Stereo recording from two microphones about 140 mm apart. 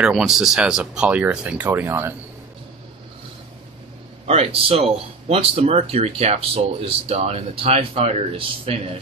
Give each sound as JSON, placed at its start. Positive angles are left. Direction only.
{"t": 0.0, "sound": "speech", "side_deg": -5}
{"t": 4.3, "sound": "speech", "side_deg": -45}